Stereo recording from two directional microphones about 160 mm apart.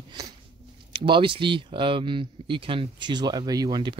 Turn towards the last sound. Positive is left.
turn(degrees=-25)  # may be behind; listen again after turning